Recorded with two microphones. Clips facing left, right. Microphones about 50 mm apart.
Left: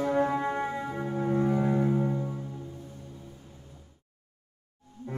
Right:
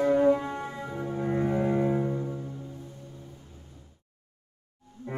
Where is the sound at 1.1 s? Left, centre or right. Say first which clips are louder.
Left 1 dB; centre.